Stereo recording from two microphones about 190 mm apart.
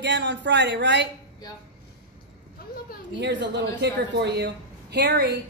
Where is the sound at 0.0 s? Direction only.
65° right (ahead or behind).